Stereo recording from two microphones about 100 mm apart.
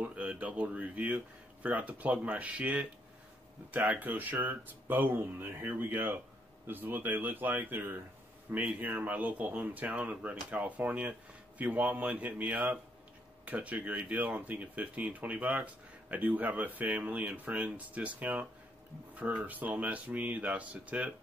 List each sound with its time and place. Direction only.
0.0 s speech: 15° right (ahead or behind)